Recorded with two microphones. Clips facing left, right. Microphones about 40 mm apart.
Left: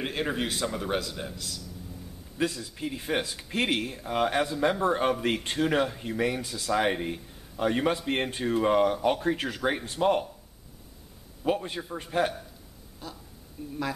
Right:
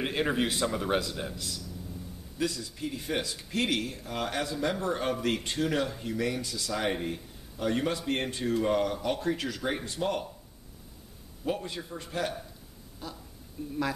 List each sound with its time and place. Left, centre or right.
0.0 s speech: centre
2.3 s speech: left
11.4 s speech: left
13.0 s speech: centre